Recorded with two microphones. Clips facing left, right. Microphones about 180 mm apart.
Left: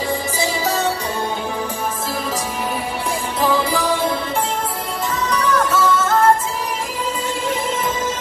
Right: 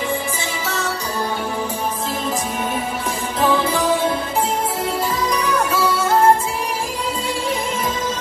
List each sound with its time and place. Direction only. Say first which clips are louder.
0.4 s music: left 5 dB; 35° left (ahead or behind)
3.3 s music: right 1 dB; centre (ahead or behind)
5.3 s music: left 5 dB; 10° right (ahead or behind)